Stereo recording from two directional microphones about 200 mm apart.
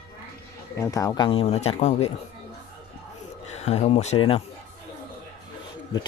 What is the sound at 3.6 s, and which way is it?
Speech, 35° left (ahead or behind).